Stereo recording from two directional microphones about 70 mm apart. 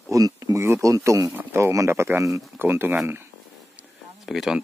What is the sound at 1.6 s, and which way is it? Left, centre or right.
Speech, right.